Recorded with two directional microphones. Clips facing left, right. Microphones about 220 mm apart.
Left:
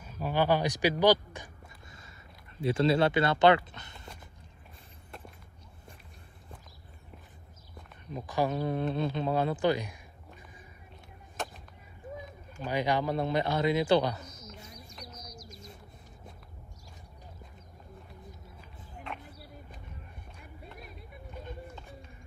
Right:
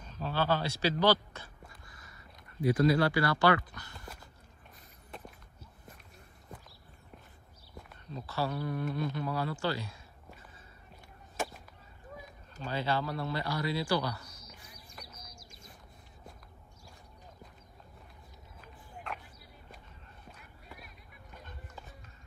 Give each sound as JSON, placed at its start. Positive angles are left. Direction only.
{"t": 0.0, "sound": "a sound", "side_deg": 10}
{"t": 2.6, "sound": "speech", "side_deg": 25}
{"t": 8.3, "sound": "speech", "side_deg": 15}
{"t": 12.6, "sound": "speech", "side_deg": 15}